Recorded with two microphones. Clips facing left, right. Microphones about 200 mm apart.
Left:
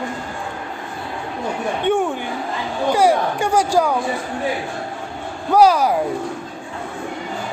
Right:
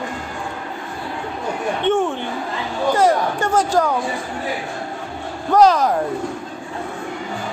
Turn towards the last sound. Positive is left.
turn(degrees=10)  # may be behind; listen again after turning